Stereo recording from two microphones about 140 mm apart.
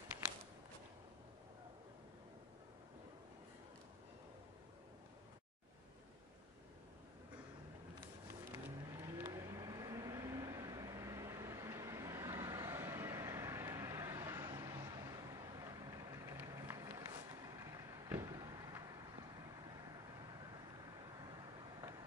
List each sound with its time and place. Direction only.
8.5 s vehicle: 20° right (ahead or behind)
21.3 s vehicle: 30° right (ahead or behind)